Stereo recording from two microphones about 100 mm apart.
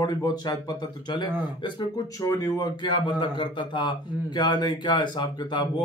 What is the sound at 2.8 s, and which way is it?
A man's voice, 50° left (ahead or behind).